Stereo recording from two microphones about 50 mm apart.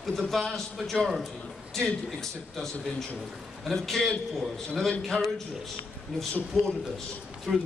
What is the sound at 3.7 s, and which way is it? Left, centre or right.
A man's voice, centre.